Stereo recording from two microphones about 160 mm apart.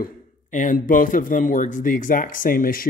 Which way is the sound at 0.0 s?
50° left (ahead or behind).